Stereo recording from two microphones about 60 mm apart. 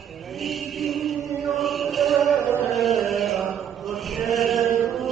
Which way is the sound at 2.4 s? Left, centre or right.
Left.